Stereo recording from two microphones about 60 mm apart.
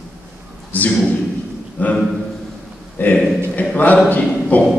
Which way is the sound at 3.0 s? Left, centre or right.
Left.